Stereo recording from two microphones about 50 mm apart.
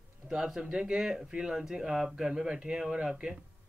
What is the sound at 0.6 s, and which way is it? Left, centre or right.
Speech, right.